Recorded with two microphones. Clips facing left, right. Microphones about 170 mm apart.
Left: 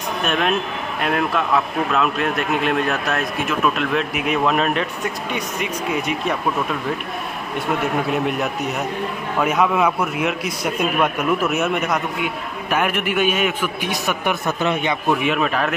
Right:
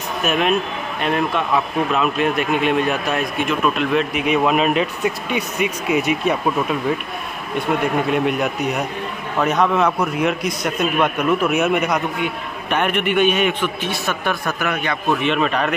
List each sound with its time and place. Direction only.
0.2 s a man's voice: 5° right (ahead or behind)
7.8 s a man's voice: centre (ahead or behind)
13.8 s a man's voice: 15° left (ahead or behind)
15.2 s a man's voice: 5° left (ahead or behind)